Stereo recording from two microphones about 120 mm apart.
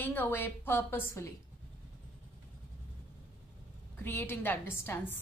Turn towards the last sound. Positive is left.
turn(degrees=20)  # may be behind; listen again after turning